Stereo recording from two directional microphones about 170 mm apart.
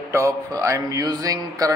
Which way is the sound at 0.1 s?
20° right (ahead or behind).